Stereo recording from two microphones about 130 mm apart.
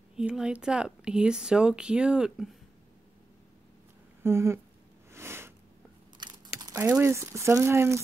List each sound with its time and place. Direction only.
0.1 s speech: 5° right (ahead or behind)
4.2 s speech: 20° right (ahead or behind)
5.1 s a sound: 20° right (ahead or behind)
6.1 s crumpling: 35° right (ahead or behind)
6.8 s speech: 15° right (ahead or behind)